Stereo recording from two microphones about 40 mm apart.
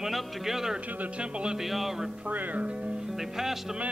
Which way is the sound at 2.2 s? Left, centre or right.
Right.